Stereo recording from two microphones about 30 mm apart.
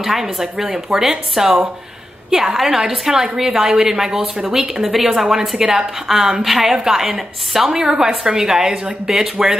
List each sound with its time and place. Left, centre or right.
0.0 s a woman's voice: centre
5.6 s a woman's voice: right